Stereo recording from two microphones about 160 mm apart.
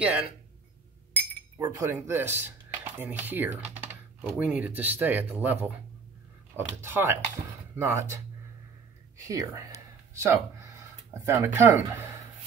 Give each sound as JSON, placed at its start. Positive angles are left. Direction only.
{"t": 0.0, "sound": "speech", "side_deg": -5}
{"t": 1.6, "sound": "speech", "side_deg": -15}
{"t": 9.2, "sound": "speech", "side_deg": -20}